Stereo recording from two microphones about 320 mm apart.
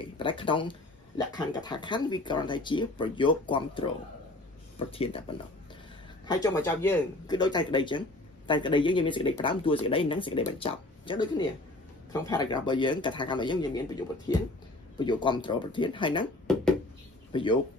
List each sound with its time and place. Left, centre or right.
0.0 s speech: centre
6.2 s speech: centre
17.3 s speech: centre